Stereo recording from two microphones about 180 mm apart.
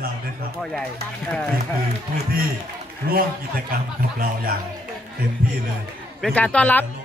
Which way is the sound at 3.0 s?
60° right (ahead or behind).